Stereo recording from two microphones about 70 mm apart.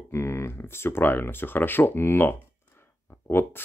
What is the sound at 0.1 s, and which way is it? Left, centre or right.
Speech, left.